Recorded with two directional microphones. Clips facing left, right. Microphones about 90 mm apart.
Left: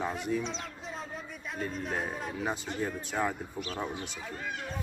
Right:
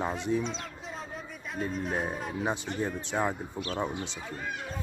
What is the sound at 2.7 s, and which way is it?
Speech, 20° right (ahead or behind).